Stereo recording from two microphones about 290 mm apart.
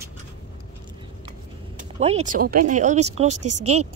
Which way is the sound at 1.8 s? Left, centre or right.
Right.